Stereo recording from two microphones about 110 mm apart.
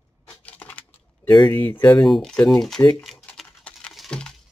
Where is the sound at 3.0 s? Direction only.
Centre (ahead or behind).